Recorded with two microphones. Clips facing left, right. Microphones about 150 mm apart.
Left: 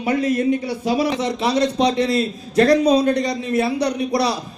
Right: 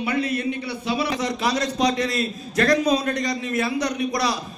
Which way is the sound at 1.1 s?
30° left (ahead or behind).